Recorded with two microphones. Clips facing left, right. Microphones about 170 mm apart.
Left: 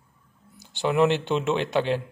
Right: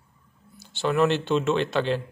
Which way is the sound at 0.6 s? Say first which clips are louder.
Left 1 dB; 15° left (ahead or behind).